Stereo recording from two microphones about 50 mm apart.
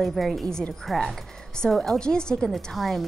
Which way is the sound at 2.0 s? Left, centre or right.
Centre.